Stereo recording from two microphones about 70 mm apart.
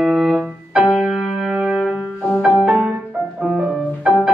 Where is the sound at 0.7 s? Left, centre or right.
Centre.